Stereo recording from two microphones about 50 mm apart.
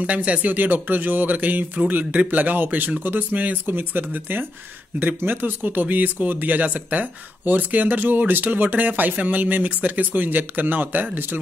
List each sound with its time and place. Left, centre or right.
0.0 s speech: right